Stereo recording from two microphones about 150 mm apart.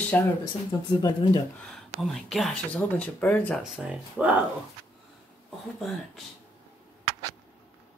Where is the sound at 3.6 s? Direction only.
5° right (ahead or behind).